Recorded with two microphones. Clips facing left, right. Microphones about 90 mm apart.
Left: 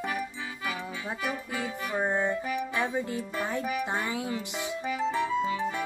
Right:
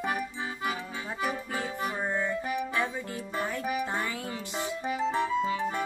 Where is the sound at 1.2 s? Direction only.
30° right (ahead or behind).